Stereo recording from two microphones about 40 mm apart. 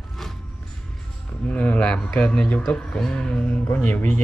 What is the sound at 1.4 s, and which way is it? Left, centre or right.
Speech, left.